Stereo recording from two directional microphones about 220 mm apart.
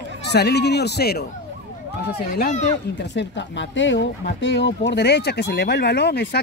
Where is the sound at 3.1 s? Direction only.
55° left (ahead or behind).